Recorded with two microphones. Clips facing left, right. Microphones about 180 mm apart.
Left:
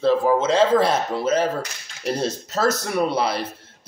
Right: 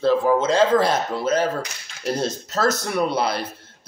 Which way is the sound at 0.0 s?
Centre (ahead or behind).